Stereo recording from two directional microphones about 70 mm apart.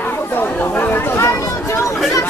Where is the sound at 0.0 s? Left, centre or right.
Left.